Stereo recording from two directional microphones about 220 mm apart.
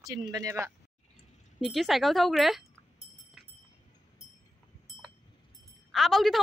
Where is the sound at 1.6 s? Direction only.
Centre (ahead or behind).